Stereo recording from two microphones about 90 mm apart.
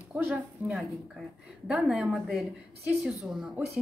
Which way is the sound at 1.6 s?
10° right (ahead or behind).